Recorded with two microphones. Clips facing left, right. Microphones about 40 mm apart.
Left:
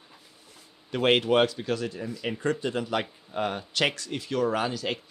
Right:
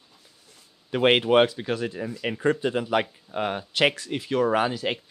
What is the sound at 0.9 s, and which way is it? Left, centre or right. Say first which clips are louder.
Speech: right 3 dB; right.